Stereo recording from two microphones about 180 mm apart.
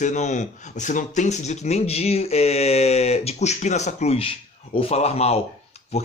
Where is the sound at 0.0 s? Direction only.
40° left (ahead or behind).